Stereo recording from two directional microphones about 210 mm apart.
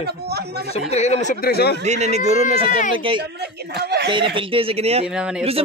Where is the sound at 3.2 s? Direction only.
50° right (ahead or behind).